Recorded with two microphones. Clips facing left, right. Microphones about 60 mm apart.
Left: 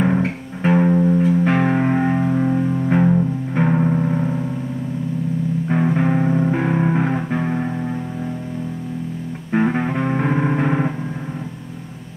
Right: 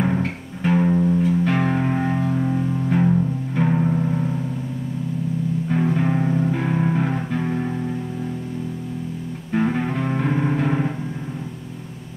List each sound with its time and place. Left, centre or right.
0.0 s music: centre
5.7 s music: left
9.5 s music: left